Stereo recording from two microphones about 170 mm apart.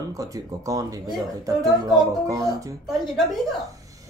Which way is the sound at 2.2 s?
20° right (ahead or behind).